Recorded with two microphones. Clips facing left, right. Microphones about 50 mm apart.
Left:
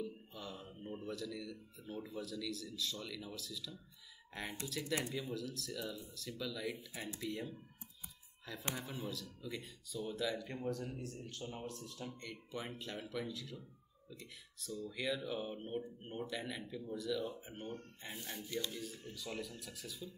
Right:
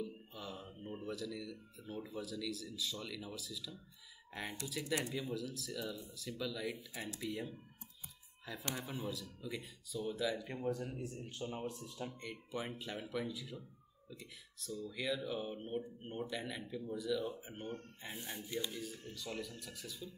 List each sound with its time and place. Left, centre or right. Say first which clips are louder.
0.0 s a sound: even; centre
0.8 s speech: right 1 dB; centre; by 12.2 s right
12.2 s speech: right 2 dB; centre